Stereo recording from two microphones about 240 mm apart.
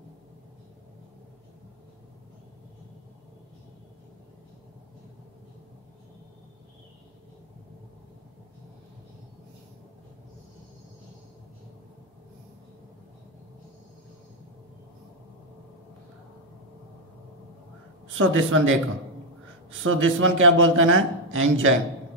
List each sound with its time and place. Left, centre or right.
18.0 s a woman's voice: right
19.8 s a man's voice: right